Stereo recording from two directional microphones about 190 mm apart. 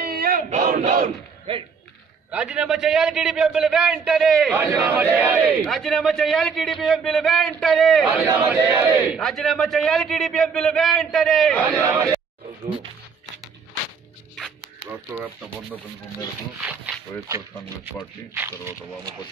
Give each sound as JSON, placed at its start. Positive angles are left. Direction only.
{"t": 0.0, "sound": "battle cry", "side_deg": -50}
{"t": 1.5, "sound": "speech", "side_deg": -30}
{"t": 2.3, "sound": "a man's voice", "side_deg": -5}
{"t": 8.1, "sound": "a man's voice", "side_deg": -10}
{"t": 15.1, "sound": "a man's voice", "side_deg": -10}